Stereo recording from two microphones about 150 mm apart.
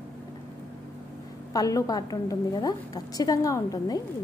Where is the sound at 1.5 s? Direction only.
25° left (ahead or behind).